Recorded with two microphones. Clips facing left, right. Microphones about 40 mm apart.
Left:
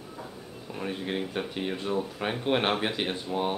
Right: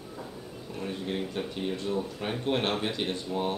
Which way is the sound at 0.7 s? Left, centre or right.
Left.